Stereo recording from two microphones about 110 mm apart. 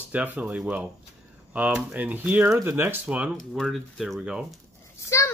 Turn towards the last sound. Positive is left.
turn(degrees=25)  # may be behind; listen again after turning